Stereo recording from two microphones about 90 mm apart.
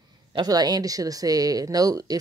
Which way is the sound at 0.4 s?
45° right (ahead or behind).